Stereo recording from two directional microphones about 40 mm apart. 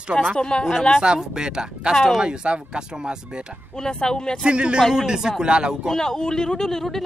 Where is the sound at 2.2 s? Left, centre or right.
Right.